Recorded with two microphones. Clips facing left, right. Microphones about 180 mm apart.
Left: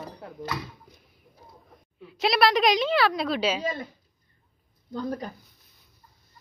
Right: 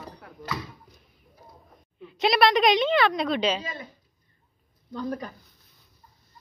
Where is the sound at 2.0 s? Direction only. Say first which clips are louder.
Right 1 dB; centre (ahead or behind).